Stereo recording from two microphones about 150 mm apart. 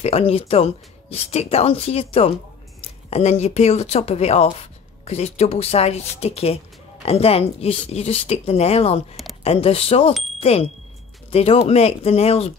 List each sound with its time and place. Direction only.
0.0 s speech: 40° left (ahead or behind)
9.1 s a sound: centre (ahead or behind)
9.4 s speech: 40° left (ahead or behind)